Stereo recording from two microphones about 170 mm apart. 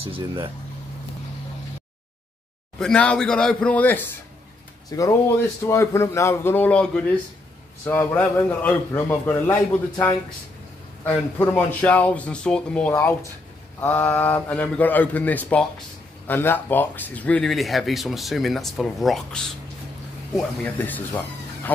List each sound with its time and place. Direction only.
0.0 s speech: 35° right (ahead or behind)
2.8 s a man's voice: 5° left (ahead or behind)
4.9 s a man's voice: 20° left (ahead or behind)